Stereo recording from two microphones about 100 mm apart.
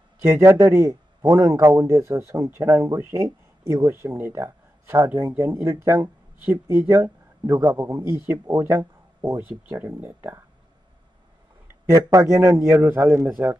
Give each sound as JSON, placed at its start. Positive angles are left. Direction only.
{"t": 0.2, "sound": "a man's voice", "side_deg": -30}
{"t": 11.9, "sound": "a man's voice", "side_deg": -30}